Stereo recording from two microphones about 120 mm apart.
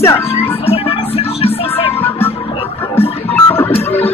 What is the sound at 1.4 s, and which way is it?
Music, 55° left (ahead or behind).